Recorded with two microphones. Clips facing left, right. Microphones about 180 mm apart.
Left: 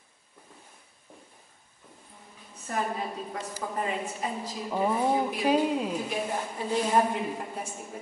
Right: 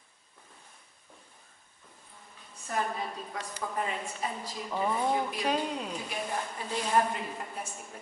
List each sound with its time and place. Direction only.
2.7 s a woman's voice: 10° left (ahead or behind)
5.4 s a woman's voice: 5° left (ahead or behind)
6.6 s a woman's voice: 25° left (ahead or behind)
6.9 s a woman's voice: 10° left (ahead or behind)